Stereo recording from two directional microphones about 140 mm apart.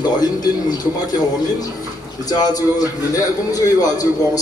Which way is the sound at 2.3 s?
25° left (ahead or behind).